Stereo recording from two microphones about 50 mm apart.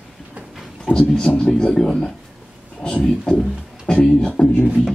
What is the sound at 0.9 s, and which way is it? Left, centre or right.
Speech, centre.